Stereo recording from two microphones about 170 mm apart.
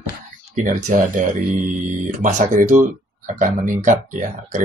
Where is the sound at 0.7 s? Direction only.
45° right (ahead or behind).